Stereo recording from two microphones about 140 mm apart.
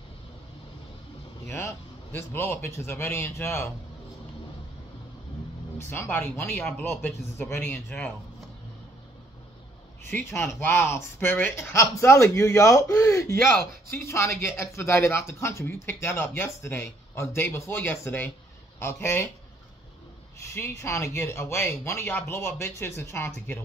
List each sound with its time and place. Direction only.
2.1 s speech: 15° left (ahead or behind)
5.8 s speech: 20° left (ahead or behind)
10.0 s speech: 15° left (ahead or behind)
20.4 s speech: 20° left (ahead or behind)